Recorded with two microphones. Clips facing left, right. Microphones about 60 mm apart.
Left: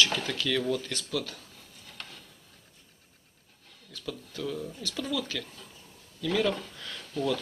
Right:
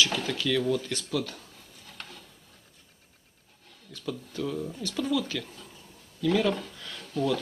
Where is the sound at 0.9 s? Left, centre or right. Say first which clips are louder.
Right 2 dB; right.